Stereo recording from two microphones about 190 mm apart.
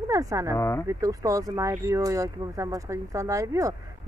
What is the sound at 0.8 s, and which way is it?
Speech, 15° right (ahead or behind).